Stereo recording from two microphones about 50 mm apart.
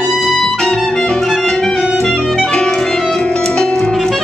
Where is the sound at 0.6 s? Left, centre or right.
Centre.